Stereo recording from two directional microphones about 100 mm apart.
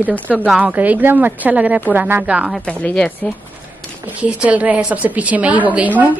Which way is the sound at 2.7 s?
10° left (ahead or behind).